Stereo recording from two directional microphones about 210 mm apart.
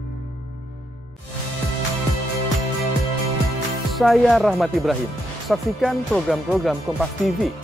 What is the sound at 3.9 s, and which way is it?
Speech, centre (ahead or behind).